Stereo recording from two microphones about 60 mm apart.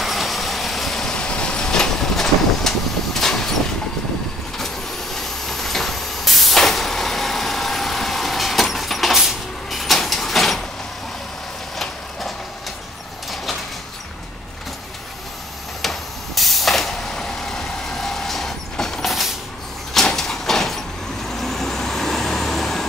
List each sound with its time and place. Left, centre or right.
0.0 s vehicle: centre
5.1 s vehicle: centre
15.8 s vehicle: centre
19.9 s a sound: centre
21.4 s vehicle: centre